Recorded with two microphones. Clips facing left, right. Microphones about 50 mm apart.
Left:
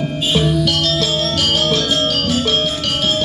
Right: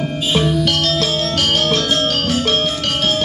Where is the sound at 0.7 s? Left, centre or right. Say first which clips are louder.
Even; right.